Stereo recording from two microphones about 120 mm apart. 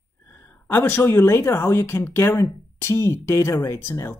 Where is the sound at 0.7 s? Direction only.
20° left (ahead or behind).